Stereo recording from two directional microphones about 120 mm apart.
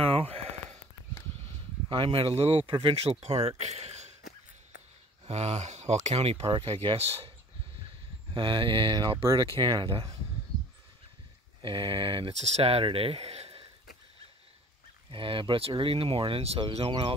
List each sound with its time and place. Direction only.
0.0 s a sound: 55° right (ahead or behind)
1.9 s speech: 50° right (ahead or behind); by 4.1 s 65° right (ahead or behind)
5.2 s speech: 65° right (ahead or behind)
8.3 s speech: 45° right (ahead or behind)
9.2 s speech: 30° right (ahead or behind)
11.6 s speech: 45° right (ahead or behind)
12.4 s speech: 60° right (ahead or behind)
15.0 s speech: 45° right (ahead or behind)